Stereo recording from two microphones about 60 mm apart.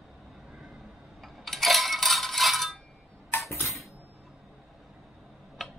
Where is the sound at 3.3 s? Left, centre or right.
Left.